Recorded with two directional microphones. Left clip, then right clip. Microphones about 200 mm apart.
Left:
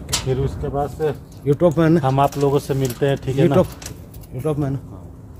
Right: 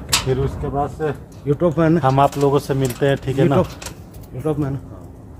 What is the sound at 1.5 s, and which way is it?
Speech, 60° left (ahead or behind).